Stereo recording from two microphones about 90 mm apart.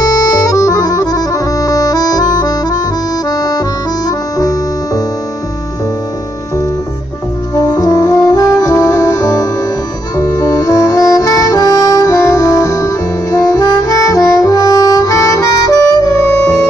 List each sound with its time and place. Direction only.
0.0 s music: 45° left (ahead or behind)
7.7 s brass instrument: 40° left (ahead or behind)